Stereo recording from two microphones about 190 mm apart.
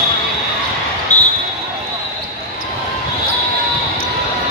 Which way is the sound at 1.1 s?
40° left (ahead or behind).